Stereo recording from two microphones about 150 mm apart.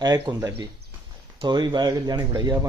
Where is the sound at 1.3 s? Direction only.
30° right (ahead or behind).